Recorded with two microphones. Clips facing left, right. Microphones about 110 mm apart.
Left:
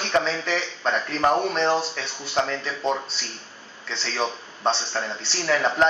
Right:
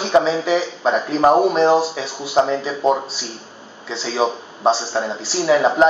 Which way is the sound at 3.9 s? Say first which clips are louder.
Right 7 dB; 5° right (ahead or behind).